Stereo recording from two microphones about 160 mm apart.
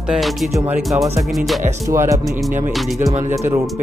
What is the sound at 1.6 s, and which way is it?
Speech, 15° right (ahead or behind).